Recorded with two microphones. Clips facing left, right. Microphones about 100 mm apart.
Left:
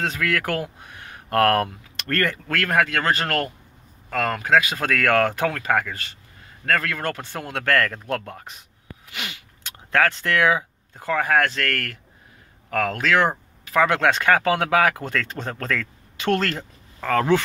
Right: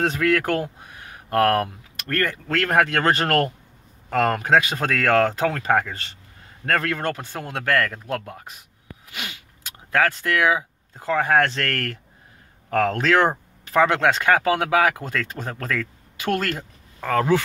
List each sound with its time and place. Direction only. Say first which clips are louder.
0.0 s speech: right 4 dB; 35° right (ahead or behind); by 2.5 s 15° right (ahead or behind)
2.5 s speech: right 3 dB; 35° right (ahead or behind)
4.7 s speech: right 1 dB; 20° right (ahead or behind)
13.8 s speech: left 2 dB; 15° right (ahead or behind)